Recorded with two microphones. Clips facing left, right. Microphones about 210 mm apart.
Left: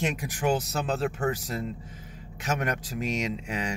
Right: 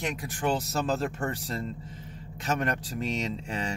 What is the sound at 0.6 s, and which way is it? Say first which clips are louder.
Speech: even; centre (ahead or behind).